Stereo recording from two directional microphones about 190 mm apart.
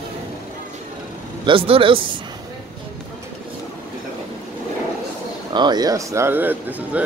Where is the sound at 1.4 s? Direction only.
30° right (ahead or behind).